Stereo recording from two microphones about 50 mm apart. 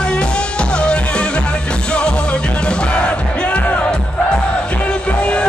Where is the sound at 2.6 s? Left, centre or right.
Left.